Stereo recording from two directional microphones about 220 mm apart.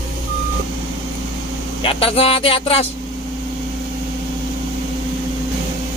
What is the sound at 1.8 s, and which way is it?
Speech, 25° left (ahead or behind).